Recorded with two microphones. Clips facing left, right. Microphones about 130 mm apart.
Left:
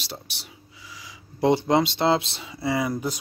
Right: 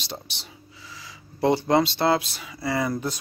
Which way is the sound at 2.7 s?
10° left (ahead or behind).